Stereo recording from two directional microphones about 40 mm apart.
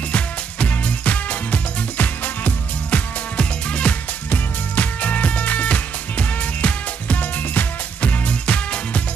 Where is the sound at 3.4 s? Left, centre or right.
Left.